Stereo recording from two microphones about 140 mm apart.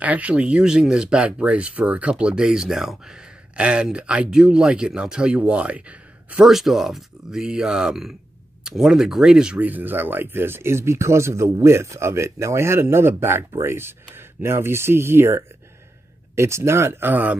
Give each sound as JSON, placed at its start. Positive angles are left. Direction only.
{"t": 0.0, "sound": "speech", "side_deg": -10}